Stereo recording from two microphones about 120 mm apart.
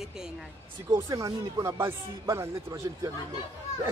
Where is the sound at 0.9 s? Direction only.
30° right (ahead or behind).